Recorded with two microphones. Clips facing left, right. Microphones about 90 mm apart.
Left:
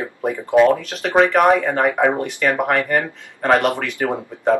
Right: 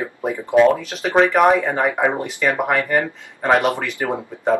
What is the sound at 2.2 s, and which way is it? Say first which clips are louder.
Speech: left 1 dB; 15° right (ahead or behind).